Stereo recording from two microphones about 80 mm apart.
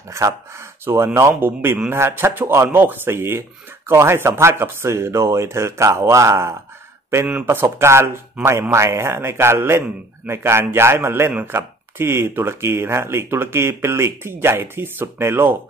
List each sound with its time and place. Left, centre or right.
0.1 s a man's voice: right
7.8 s speech: right